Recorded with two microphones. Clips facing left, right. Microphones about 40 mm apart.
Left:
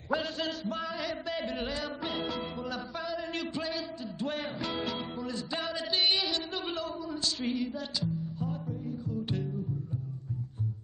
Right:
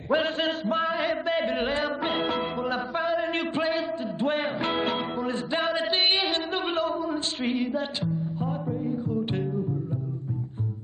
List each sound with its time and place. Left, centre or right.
0.1 s chant: right